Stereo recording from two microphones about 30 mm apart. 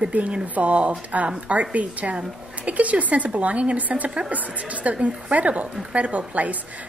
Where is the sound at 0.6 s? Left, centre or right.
Right.